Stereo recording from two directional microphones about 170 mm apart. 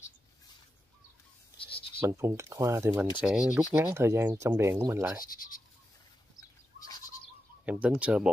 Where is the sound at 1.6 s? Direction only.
30° left (ahead or behind).